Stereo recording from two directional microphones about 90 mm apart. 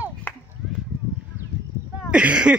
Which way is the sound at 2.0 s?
10° right (ahead or behind).